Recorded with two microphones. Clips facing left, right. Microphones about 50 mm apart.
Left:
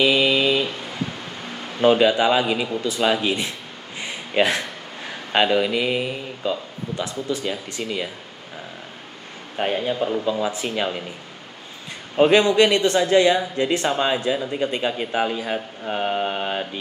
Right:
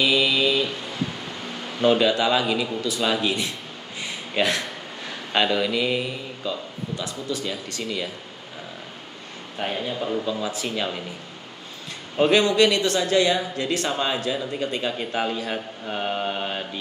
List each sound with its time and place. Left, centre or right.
0.0 s mantra: left
1.8 s speech: centre
9.6 s speech: left
12.2 s speech: left